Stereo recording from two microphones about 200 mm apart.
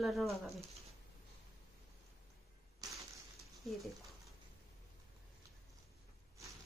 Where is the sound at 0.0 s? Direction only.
Centre (ahead or behind).